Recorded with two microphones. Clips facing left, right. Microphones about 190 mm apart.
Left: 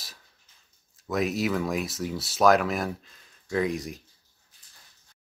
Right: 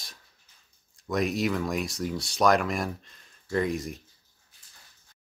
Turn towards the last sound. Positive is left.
turn(degrees=0)  # may be behind; listen again after turning